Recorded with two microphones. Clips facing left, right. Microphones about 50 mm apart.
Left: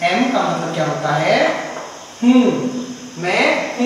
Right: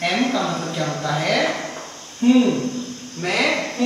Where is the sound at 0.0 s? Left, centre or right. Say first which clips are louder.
Left 5 dB; centre.